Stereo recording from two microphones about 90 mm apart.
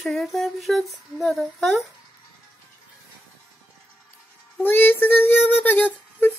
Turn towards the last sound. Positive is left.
turn(degrees=20)  # may be behind; listen again after turning